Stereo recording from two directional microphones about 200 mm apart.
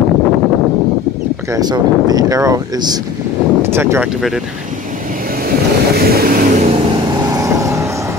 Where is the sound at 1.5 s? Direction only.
20° right (ahead or behind).